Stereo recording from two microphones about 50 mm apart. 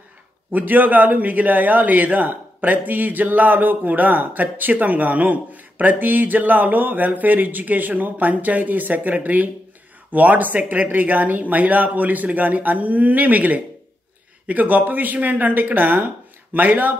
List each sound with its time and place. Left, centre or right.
0.5 s a man's voice: right